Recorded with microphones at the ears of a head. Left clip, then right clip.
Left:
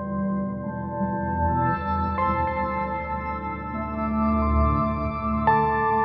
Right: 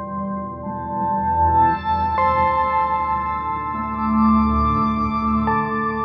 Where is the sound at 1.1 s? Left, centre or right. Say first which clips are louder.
Right 9 dB; right.